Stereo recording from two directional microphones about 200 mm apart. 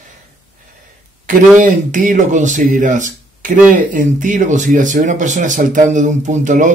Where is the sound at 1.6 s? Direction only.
40° right (ahead or behind).